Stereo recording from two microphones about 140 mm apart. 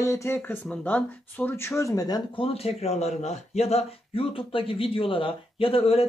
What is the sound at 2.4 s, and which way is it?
Speech, 45° left (ahead or behind).